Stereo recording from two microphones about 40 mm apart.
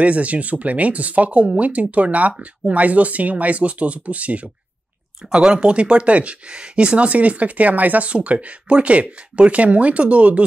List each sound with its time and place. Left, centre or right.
0.0 s speech: right
5.3 s speech: right